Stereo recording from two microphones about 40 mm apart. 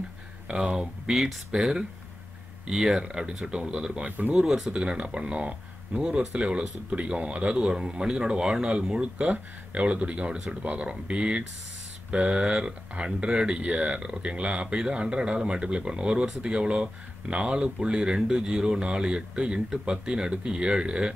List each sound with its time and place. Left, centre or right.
0.5 s speech: centre
4.5 s speech: centre
4.7 s speech: right
10.3 s speech: centre